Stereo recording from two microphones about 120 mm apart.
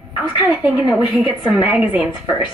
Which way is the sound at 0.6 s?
10° right (ahead or behind).